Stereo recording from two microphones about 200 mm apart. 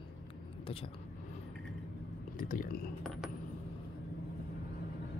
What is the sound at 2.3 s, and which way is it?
Speech, 45° left (ahead or behind).